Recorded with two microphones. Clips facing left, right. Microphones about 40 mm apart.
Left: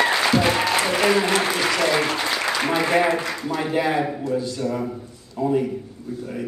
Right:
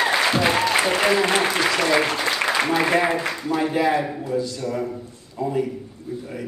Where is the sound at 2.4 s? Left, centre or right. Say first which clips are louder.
Right 2 dB; right.